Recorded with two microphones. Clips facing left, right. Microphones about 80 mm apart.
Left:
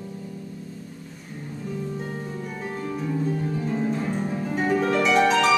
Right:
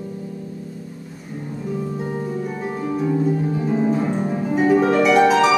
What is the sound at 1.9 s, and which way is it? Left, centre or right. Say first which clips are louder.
Harp: right 7 dB; centre.